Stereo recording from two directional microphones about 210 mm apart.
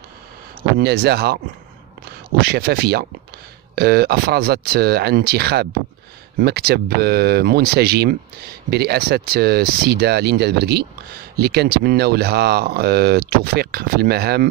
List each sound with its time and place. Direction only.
0.6 s speech: 50° right (ahead or behind)
2.4 s speech: 50° right (ahead or behind)